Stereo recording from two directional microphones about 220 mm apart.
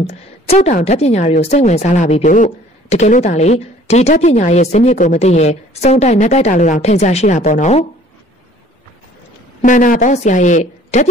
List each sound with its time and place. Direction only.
0.0 s a woman's voice: 30° left (ahead or behind)
9.6 s a woman's voice: 35° left (ahead or behind)